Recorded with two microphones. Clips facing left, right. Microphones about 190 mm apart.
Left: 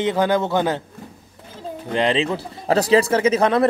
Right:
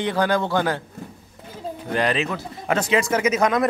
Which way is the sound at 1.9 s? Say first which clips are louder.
Left 3 dB; 25° left (ahead or behind).